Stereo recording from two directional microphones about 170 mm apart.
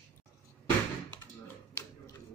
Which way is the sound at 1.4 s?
15° left (ahead or behind).